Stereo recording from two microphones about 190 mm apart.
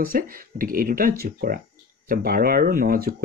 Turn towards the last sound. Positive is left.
turn(degrees=-50)  # may be behind; listen again after turning